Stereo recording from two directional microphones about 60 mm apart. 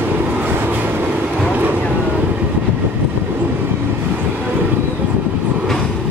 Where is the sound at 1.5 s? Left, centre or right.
Right.